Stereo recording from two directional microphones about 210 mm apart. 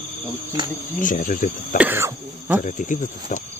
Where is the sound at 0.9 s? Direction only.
40° left (ahead or behind).